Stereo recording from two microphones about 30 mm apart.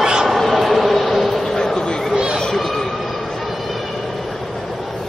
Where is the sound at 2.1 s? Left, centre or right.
Right.